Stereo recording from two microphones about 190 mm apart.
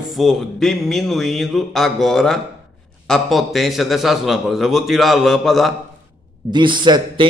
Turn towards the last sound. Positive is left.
turn(degrees=-25)  # may be behind; listen again after turning